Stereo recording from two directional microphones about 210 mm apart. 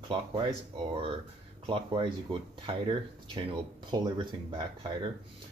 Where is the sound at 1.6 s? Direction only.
25° right (ahead or behind).